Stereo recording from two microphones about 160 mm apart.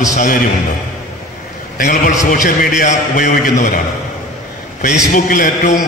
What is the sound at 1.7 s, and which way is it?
A man's voice, 60° left (ahead or behind).